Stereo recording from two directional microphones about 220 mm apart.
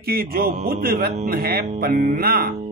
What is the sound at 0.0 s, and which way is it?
Speech, 40° right (ahead or behind).